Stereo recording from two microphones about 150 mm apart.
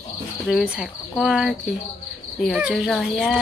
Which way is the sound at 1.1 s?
Centre (ahead or behind).